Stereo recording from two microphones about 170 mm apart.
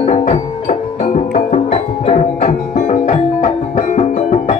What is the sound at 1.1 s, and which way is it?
Music, 50° left (ahead or behind).